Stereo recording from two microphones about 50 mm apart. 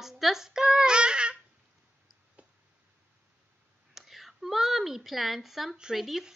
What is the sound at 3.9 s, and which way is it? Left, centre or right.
A woman's voice, centre.